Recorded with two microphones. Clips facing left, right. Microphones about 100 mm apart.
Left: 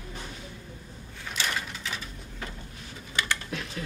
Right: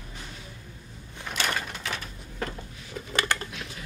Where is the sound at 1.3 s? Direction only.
55° right (ahead or behind).